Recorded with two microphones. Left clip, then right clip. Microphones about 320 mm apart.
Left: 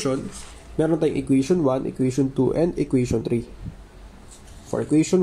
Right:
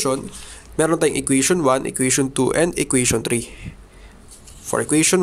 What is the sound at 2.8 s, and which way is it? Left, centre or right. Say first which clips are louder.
Speech: right 3 dB; right.